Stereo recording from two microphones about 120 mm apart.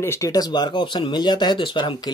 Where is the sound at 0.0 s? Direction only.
25° left (ahead or behind).